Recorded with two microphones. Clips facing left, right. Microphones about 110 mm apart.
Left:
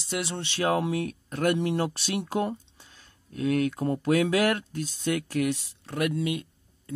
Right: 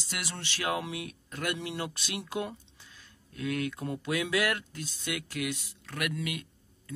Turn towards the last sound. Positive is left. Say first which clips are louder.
# left 7 dB
turn(degrees=25)  # may be behind; listen again after turning